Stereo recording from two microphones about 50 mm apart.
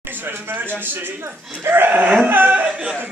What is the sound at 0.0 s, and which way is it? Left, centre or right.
Speech, right.